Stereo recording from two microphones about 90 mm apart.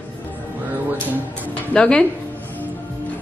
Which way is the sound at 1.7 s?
10° left (ahead or behind).